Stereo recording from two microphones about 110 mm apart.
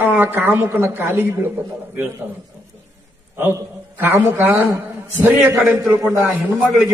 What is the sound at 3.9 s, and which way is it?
Speech, 20° right (ahead or behind).